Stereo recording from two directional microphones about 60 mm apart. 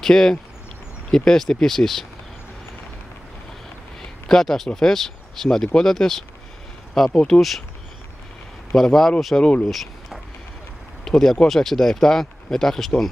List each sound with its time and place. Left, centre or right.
0.0 s speech: centre
4.0 s speech: centre
7.3 s speech: centre
8.7 s speech: centre
9.7 s a sound: centre
11.1 s speech: centre